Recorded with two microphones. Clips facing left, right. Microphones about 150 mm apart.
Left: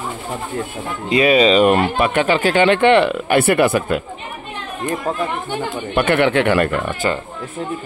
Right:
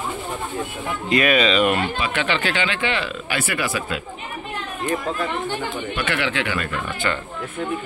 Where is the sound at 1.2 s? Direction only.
30° left (ahead or behind).